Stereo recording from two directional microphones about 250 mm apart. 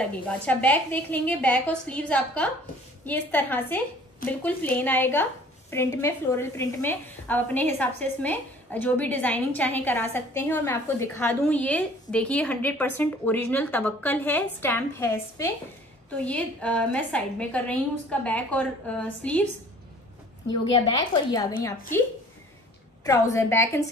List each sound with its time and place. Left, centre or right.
0.1 s a woman's voice: centre
20.4 s a woman's voice: centre
23.0 s a woman's voice: centre